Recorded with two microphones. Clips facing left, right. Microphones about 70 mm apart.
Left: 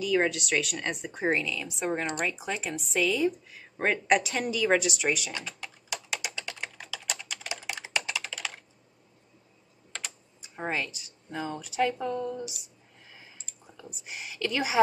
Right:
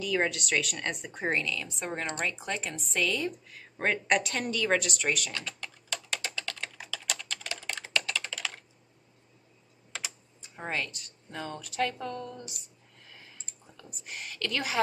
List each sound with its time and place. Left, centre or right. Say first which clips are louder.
0.0 s speech: left 3 dB; centre
5.6 s typing: left 1 dB; centre
6.3 s computer keyboard: even; centre
7.1 s typing: left 1 dB; centre
8.0 s computer keyboard: even; centre
9.9 s typing: even; centre
10.4 s speech: left 2 dB; centre
14.0 s speech: left 3 dB; centre